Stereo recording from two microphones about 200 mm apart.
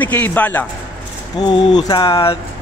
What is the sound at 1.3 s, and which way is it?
A man's voice, 20° left (ahead or behind).